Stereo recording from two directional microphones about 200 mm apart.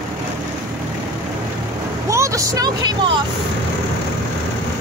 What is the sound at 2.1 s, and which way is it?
Vehicle, 15° right (ahead or behind).